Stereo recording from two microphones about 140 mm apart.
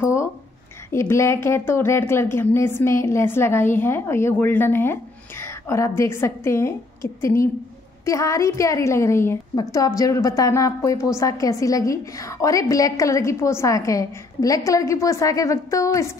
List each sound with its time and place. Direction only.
0.0 s a woman's voice: 20° left (ahead or behind)